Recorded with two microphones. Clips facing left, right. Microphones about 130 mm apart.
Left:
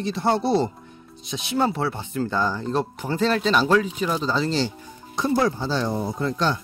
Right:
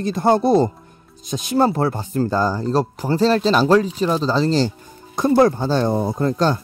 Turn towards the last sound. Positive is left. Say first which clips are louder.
# right 5 dB
turn(degrees=-40)  # may be behind; listen again after turning